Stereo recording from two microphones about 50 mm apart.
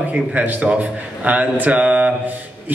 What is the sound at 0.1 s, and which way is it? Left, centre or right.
A man's voice, right.